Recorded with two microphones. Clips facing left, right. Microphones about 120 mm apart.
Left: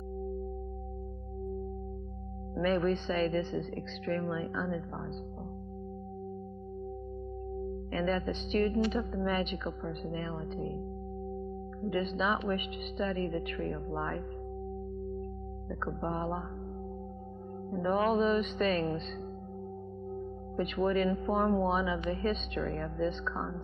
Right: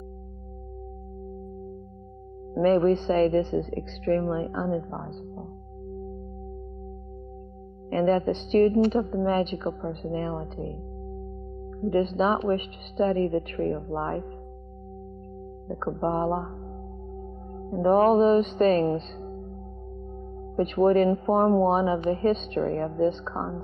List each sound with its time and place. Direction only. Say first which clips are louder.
2.5 s speech: right 9 dB; 40° right (ahead or behind)
7.9 s speech: right 10 dB; 40° right (ahead or behind)
11.9 s speech: right 8 dB; 40° right (ahead or behind)
15.7 s speech: right 8 dB; 40° right (ahead or behind)
17.6 s speech: right 9 dB; 45° right (ahead or behind)
20.5 s speech: right 9 dB; 40° right (ahead or behind)